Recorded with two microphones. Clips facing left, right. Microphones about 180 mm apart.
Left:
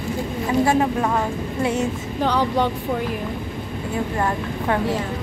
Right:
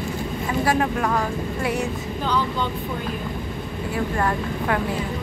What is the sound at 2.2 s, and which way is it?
Speech, 70° left (ahead or behind).